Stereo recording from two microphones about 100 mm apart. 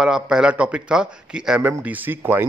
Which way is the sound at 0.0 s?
5° right (ahead or behind).